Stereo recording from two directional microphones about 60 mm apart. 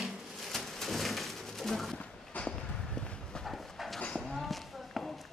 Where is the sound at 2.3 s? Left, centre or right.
Left.